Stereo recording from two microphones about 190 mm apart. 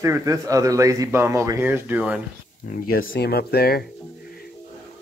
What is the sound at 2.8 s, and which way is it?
Speech, 50° left (ahead or behind).